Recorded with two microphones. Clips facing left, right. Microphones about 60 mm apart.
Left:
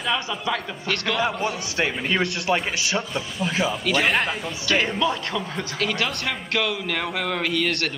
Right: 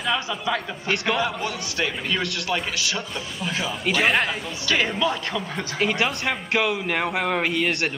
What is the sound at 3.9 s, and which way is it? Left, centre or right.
A man's voice, centre.